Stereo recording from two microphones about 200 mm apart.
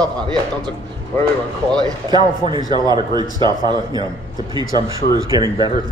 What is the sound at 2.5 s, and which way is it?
A man's voice, 20° right (ahead or behind).